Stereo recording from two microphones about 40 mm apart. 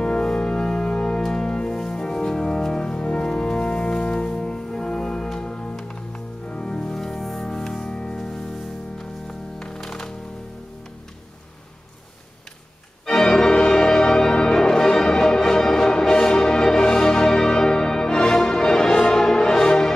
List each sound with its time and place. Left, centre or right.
0.0 s organ: centre
5.9 s music: left; by 7.4 s centre
7.4 s music: centre
13.0 s organ: centre